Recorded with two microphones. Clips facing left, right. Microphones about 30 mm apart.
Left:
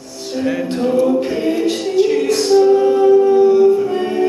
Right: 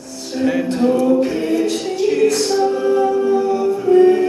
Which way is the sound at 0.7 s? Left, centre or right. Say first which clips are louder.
Left 1 dB; centre.